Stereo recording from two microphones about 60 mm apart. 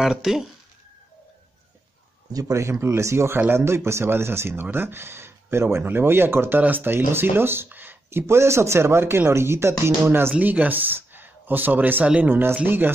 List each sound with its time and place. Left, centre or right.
0.0 s speech: centre
2.5 s speech: right
10.3 s speech: right